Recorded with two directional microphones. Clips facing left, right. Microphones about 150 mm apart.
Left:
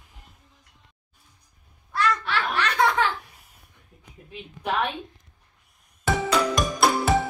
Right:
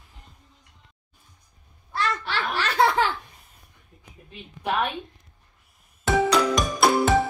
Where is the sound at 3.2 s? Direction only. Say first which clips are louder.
Right 1 dB; 10° left (ahead or behind).